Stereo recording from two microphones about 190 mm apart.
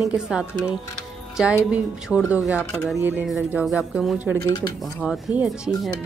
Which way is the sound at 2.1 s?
Centre (ahead or behind).